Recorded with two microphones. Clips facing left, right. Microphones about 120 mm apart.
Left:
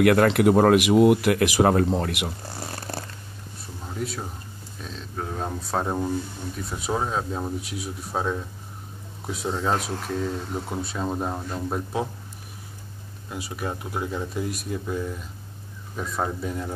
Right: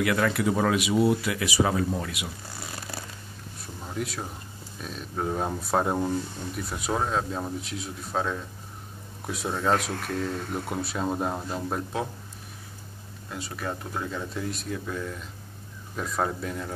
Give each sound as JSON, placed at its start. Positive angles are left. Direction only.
{"t": 0.0, "sound": "speech", "side_deg": 55}
{"t": 3.8, "sound": "speech", "side_deg": 0}
{"t": 9.3, "sound": "speech", "side_deg": 0}
{"t": 10.7, "sound": "speech", "side_deg": -5}
{"t": 13.3, "sound": "speech", "side_deg": 15}